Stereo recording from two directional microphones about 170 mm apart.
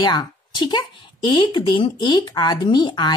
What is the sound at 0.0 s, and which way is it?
Speech, 25° left (ahead or behind).